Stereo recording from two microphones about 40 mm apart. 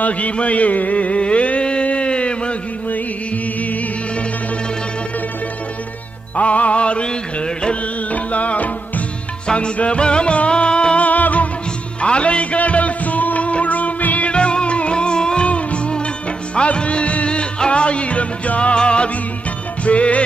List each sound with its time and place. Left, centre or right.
0.0 s a sound: left
6.3 s music: left
8.1 s music: left
9.5 s music: left
11.1 s music: left
12.0 s music: left
14.3 s music: left